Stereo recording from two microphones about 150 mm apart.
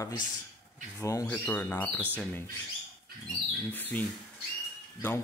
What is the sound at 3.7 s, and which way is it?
Speech, 10° left (ahead or behind).